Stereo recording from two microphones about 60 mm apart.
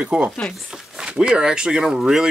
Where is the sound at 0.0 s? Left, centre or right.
Centre.